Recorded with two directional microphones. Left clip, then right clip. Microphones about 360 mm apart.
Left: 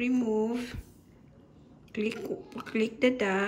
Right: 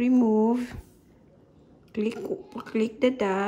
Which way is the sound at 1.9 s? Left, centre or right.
Centre.